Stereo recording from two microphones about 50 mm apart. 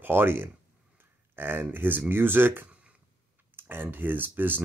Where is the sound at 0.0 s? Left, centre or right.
Right.